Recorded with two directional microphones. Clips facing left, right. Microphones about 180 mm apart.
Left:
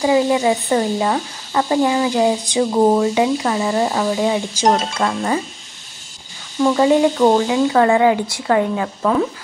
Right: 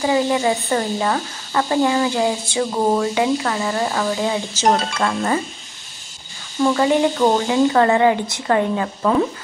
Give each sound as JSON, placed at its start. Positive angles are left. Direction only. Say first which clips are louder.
{"t": 0.0, "sound": "speech", "louder": "left 3 dB", "side_deg": 15}
{"t": 7.2, "sound": "a woman's voice", "louder": "left 2 dB", "side_deg": 10}